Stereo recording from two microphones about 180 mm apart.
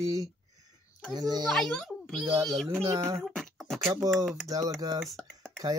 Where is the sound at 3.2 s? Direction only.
Centre (ahead or behind).